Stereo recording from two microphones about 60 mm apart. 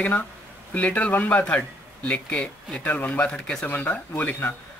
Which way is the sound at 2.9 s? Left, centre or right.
Left.